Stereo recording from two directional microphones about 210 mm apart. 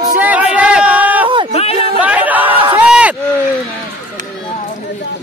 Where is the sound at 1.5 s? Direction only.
30° left (ahead or behind).